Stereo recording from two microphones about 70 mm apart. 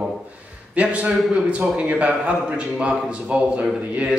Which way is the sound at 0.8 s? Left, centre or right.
Centre.